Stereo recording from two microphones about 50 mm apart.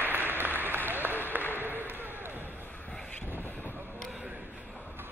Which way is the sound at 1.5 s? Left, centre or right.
Right.